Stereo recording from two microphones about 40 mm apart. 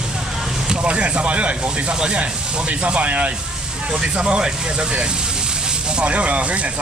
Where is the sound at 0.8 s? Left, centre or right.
Right.